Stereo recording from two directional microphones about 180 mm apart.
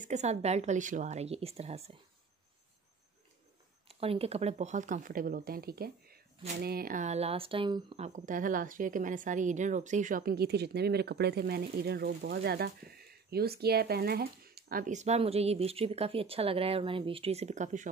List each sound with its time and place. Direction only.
0.0 s speech: 40° right (ahead or behind)
3.8 s speech: 30° right (ahead or behind)